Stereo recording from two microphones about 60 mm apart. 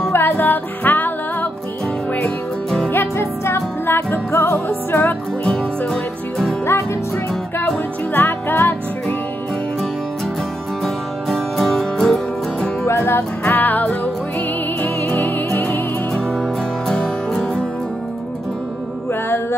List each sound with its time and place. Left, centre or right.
0.1 s music: left
2.9 s music: left
5.4 s music: centre
8.1 s music: left
10.8 s music: centre
12.8 s music: left
15.1 s music: left
16.3 s music: centre